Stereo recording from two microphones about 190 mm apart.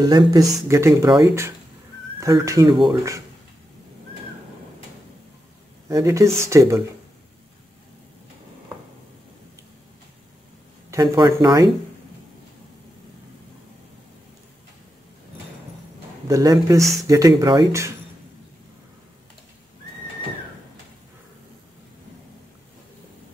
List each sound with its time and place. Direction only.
0.0 s speech: 20° right (ahead or behind)
5.9 s speech: 15° right (ahead or behind)
10.9 s speech: 20° right (ahead or behind)
16.3 s speech: 15° right (ahead or behind)